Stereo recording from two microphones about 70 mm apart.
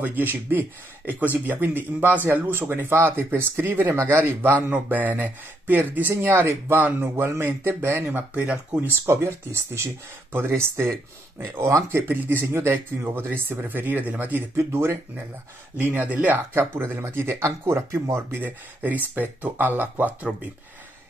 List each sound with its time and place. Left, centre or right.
0.0 s speech: right
4.6 s speech: right
12.1 s speech: right
14.6 s speech: right
15.8 s speech: right